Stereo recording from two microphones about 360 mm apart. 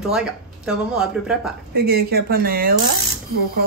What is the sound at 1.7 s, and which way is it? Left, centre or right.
Speech, right.